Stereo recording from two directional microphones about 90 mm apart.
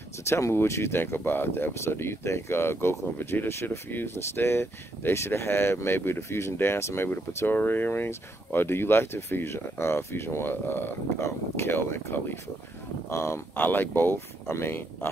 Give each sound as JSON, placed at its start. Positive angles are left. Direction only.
{"t": 0.3, "sound": "speech", "side_deg": 30}